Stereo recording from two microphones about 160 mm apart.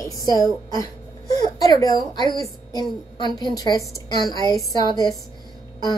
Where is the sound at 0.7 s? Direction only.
25° left (ahead or behind).